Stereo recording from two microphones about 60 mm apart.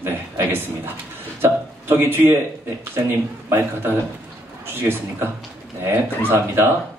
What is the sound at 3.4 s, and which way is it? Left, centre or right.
A man's voice, right.